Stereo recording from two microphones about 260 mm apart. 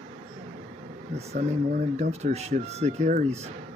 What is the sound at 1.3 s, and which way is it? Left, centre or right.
Speech, right.